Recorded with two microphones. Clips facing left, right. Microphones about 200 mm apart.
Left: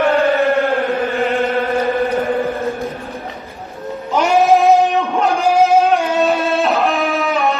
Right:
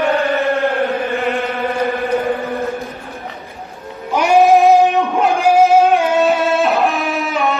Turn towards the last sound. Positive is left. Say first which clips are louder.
# left 1 dB
turn(degrees=0)  # may be behind; listen again after turning